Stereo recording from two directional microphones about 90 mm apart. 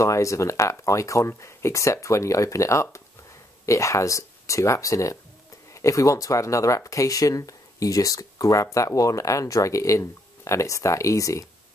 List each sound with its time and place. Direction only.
0.0 s speech: 35° left (ahead or behind)